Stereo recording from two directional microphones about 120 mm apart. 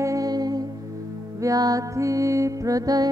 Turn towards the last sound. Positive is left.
turn(degrees=-30)  # may be behind; listen again after turning